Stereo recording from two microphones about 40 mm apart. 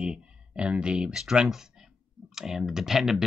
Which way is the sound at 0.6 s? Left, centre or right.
Right.